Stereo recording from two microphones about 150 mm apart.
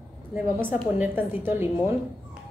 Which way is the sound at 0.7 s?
15° right (ahead or behind).